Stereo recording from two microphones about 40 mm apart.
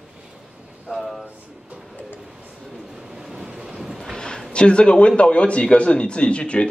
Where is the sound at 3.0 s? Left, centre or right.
Centre.